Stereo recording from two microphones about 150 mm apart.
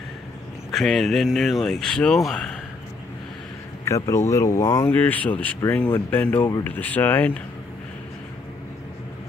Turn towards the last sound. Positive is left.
turn(degrees=10)  # may be behind; listen again after turning